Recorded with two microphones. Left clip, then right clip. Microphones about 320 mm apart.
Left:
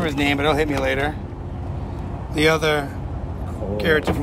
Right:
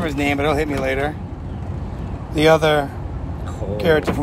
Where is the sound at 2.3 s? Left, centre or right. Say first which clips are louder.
Right 4 dB; centre.